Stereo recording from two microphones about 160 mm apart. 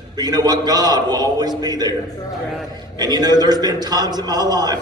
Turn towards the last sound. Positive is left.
turn(degrees=-25)  # may be behind; listen again after turning